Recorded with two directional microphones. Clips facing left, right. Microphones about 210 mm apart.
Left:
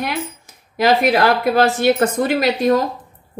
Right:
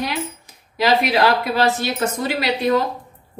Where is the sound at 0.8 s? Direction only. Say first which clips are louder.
Left 3 dB; 50° left (ahead or behind).